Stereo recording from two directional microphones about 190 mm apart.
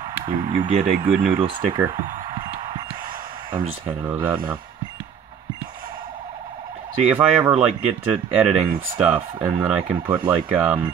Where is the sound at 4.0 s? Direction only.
10° right (ahead or behind).